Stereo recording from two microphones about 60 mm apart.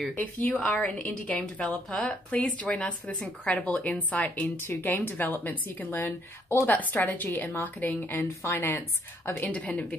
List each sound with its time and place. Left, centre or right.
0.1 s speech: left
1.9 s speech: centre
4.6 s a woman's voice: left
9.5 s speech: left